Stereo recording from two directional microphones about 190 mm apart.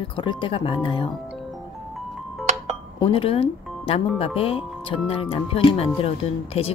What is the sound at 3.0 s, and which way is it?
Speech, 30° left (ahead or behind).